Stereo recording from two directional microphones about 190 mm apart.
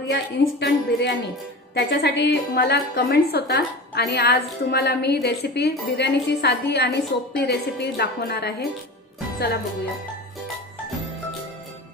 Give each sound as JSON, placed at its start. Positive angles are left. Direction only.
{"t": 0.1, "sound": "a woman's voice", "side_deg": 70}